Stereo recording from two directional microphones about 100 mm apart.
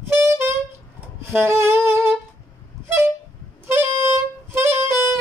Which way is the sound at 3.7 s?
20° right (ahead or behind).